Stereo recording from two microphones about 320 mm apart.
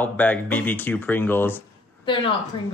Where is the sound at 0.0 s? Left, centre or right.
Centre.